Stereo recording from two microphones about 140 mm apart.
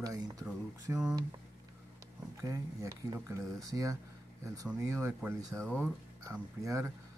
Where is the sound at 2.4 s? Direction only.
25° right (ahead or behind).